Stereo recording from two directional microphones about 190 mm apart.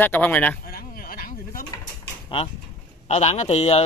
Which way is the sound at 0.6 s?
50° left (ahead or behind).